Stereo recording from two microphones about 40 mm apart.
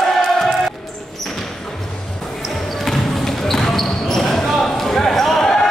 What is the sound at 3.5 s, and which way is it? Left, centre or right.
Basketball bounce, centre.